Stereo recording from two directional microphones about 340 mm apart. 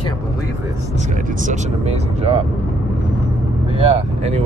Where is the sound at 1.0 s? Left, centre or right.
Right.